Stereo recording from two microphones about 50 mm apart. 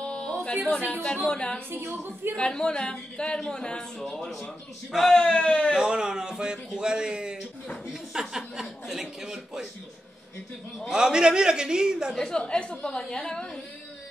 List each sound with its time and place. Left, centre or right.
0.0 s a sound: left
0.7 s a woman's voice: left
5.8 s speech: centre
10.9 s speech: centre
12.2 s a woman's voice: centre